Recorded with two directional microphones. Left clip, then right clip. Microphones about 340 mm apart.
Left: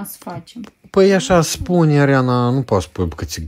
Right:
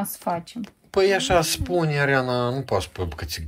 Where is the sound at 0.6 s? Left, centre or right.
Left.